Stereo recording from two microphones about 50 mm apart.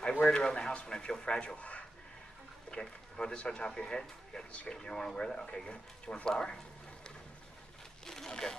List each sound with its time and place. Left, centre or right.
0.3 s speech: centre
8.1 s speech: centre